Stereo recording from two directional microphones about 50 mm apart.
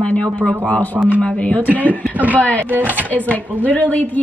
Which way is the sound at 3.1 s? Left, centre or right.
Left.